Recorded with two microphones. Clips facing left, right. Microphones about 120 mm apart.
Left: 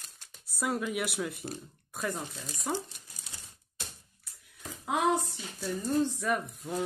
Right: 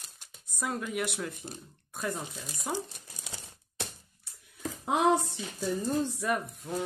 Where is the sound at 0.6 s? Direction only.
Centre (ahead or behind).